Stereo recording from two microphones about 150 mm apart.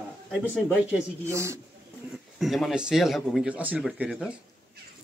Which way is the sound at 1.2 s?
20° right (ahead or behind).